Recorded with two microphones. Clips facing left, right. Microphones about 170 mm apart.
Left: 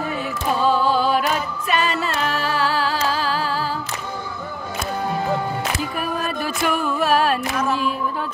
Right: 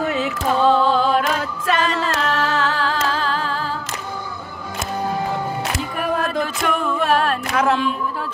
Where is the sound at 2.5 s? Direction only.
5° left (ahead or behind).